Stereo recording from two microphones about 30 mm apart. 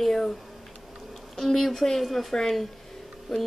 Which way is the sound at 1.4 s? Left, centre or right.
Centre.